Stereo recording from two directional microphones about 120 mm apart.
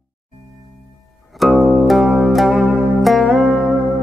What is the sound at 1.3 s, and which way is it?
Music, centre (ahead or behind).